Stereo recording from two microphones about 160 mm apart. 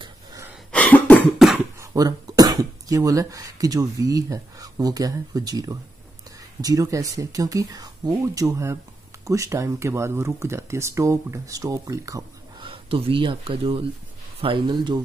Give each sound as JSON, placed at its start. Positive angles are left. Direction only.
{"t": 0.0, "sound": "a sound", "side_deg": -25}
{"t": 0.7, "sound": "cough", "side_deg": 10}
{"t": 1.8, "sound": "speech", "side_deg": -25}
{"t": 12.5, "sound": "speech", "side_deg": -35}